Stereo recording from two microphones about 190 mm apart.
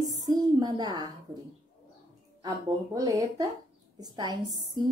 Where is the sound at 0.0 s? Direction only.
20° right (ahead or behind).